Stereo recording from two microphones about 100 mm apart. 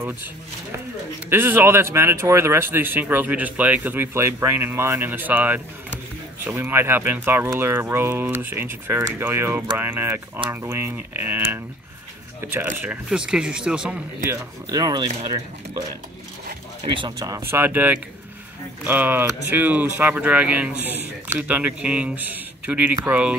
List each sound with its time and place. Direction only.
0.0 s speech: 25° right (ahead or behind)
14.3 s speech: 40° right (ahead or behind)
16.8 s speech: 60° right (ahead or behind)
17.5 s speech: 20° right (ahead or behind)